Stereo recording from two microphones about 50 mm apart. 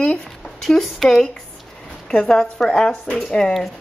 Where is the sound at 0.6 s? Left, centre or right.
Centre; by 3.5 s left.